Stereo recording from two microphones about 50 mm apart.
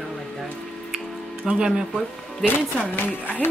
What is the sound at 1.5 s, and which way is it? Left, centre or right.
Speech, centre.